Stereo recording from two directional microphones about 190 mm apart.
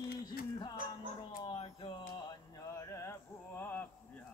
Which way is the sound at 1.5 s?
25° left (ahead or behind).